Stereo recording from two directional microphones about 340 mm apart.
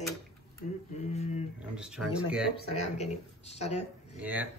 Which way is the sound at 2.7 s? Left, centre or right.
Centre.